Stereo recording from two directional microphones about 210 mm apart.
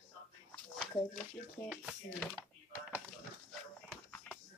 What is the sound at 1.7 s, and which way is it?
Speech, centre (ahead or behind).